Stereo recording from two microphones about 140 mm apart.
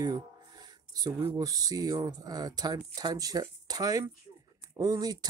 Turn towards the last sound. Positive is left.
turn(degrees=-30)  # may be behind; listen again after turning